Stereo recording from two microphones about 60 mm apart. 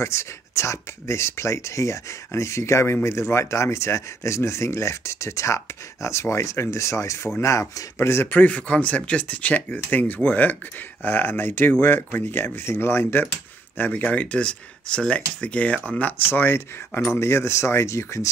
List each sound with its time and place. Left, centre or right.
0.0 s speech: left
8.3 s speech: left
13.7 s speech: left
16.0 s speech: left
17.1 s speech: left